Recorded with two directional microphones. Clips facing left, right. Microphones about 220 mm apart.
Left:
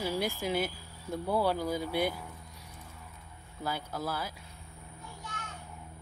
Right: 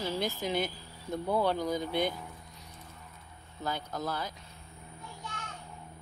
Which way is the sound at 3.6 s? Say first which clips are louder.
Even; 5° left (ahead or behind).